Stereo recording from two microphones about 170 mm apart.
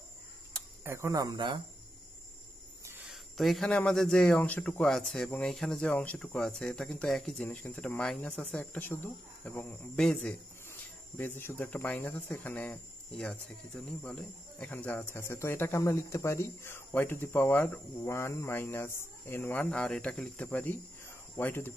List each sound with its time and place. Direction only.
0.8 s speech: 15° right (ahead or behind)
3.1 s speech: centre (ahead or behind)